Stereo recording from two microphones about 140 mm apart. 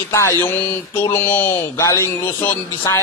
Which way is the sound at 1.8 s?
20° left (ahead or behind).